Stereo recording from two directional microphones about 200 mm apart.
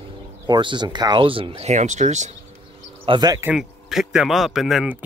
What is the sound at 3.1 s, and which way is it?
Speech, 20° right (ahead or behind).